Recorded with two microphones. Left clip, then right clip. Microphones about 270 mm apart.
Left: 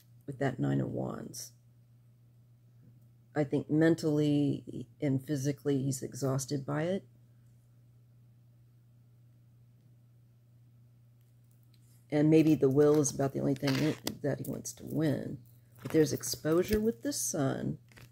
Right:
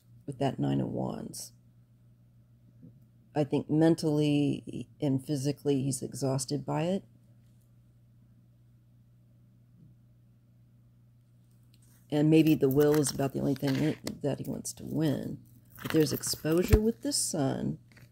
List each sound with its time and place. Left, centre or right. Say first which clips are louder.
0.2 s speech: right 2 dB; right
3.3 s speech: right 2 dB; right
12.1 s speech: right 1 dB; right